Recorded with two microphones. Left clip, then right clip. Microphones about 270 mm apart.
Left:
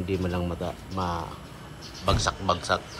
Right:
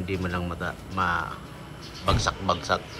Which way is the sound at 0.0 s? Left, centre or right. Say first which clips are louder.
Left 1 dB; centre.